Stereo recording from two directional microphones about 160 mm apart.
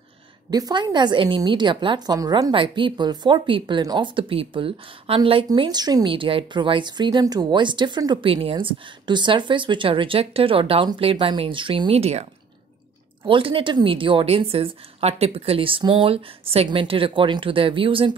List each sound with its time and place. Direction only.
0.5 s a woman's voice: 25° right (ahead or behind)